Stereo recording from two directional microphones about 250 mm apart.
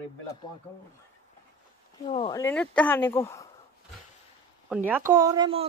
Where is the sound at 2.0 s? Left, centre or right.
Left.